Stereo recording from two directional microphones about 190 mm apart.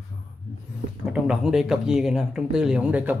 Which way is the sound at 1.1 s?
5° right (ahead or behind).